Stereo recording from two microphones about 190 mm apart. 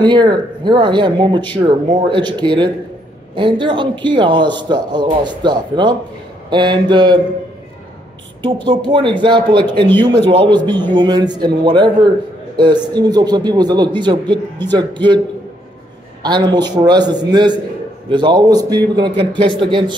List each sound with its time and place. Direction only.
0.0 s a man's voice: 25° right (ahead or behind)
8.6 s a man's voice: 25° right (ahead or behind)
16.2 s a man's voice: 20° right (ahead or behind)